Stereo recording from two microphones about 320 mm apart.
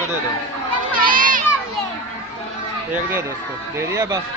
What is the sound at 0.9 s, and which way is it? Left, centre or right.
Crowd, right.